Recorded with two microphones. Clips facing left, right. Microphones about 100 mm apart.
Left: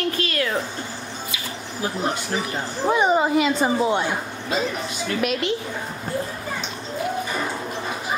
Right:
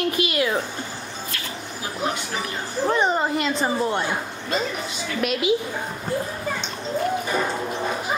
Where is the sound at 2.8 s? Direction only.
5° left (ahead or behind).